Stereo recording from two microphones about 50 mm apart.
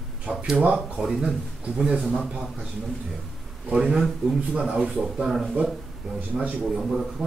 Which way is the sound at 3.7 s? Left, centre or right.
Centre.